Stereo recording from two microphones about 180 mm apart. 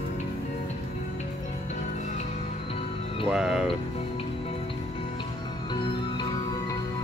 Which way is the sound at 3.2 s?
5° right (ahead or behind).